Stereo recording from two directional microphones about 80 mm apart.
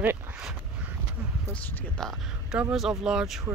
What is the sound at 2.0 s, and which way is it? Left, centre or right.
Speech, centre.